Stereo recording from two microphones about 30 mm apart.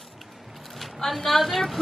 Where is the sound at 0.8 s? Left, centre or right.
Centre.